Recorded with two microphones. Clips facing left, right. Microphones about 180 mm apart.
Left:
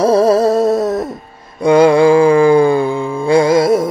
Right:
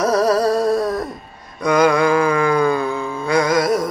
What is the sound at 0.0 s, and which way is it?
Music, 25° left (ahead or behind).